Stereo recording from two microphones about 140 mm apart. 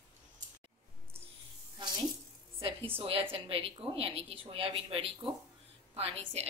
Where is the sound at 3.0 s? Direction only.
40° right (ahead or behind).